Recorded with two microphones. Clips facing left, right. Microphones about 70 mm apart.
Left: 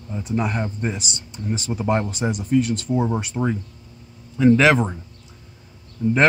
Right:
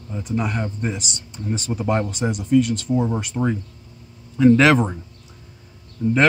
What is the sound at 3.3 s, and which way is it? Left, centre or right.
Speech, centre.